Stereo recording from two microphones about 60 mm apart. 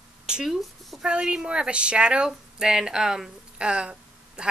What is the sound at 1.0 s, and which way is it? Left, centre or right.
A woman's voice, centre.